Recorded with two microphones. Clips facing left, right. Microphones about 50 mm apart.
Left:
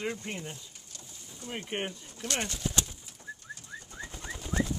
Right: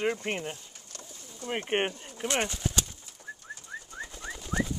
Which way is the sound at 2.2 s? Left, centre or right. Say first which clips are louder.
Right 5 dB; right.